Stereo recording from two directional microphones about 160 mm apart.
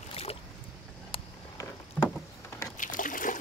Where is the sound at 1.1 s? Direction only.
35° left (ahead or behind).